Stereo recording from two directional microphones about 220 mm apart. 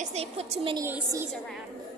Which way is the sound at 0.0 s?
30° right (ahead or behind).